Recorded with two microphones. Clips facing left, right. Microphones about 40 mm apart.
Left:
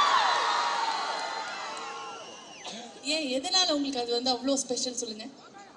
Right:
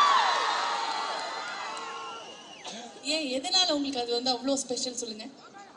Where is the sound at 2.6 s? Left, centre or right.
Left.